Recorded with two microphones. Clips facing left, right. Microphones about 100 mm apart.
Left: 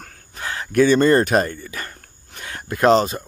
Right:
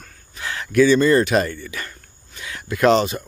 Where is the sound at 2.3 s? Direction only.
45° left (ahead or behind).